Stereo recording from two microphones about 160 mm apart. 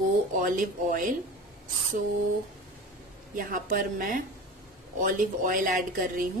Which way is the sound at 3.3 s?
60° right (ahead or behind).